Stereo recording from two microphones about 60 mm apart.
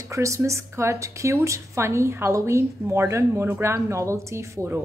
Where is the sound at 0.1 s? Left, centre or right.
Right.